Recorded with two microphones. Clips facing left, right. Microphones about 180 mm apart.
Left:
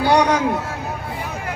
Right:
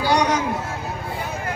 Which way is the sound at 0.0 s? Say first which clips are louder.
Left 3 dB; 60° left (ahead or behind).